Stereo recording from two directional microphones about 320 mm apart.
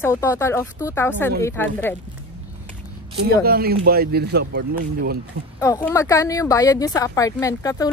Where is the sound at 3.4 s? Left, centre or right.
Right.